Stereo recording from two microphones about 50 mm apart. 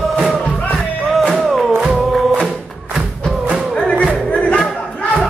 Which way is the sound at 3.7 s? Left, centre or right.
Left.